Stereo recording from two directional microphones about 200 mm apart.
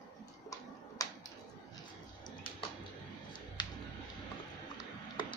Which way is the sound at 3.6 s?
20° left (ahead or behind).